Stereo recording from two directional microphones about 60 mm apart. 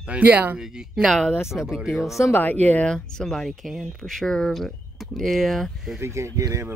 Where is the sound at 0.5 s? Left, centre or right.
Centre.